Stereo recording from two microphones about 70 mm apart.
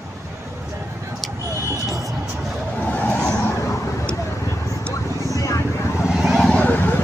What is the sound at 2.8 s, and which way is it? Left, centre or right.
Vehicle, left.